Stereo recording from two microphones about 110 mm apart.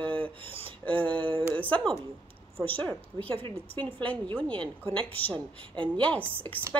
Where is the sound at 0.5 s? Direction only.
55° right (ahead or behind).